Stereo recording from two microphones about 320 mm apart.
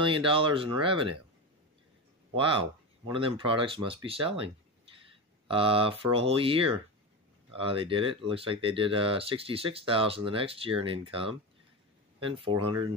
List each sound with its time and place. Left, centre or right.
0.0 s speech: centre
2.3 s speech: centre
5.5 s speech: centre